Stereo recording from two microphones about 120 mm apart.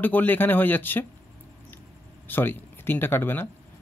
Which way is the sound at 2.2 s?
15° left (ahead or behind).